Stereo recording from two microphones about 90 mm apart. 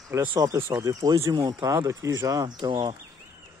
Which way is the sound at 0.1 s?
30° right (ahead or behind).